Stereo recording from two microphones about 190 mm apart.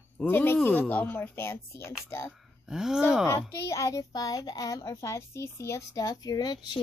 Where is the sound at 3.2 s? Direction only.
15° left (ahead or behind).